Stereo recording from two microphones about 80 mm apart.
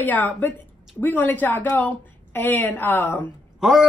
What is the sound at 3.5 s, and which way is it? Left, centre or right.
Speech, centre.